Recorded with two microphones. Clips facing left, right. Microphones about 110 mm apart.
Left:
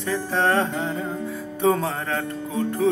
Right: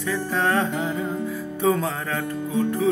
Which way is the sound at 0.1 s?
30° left (ahead or behind).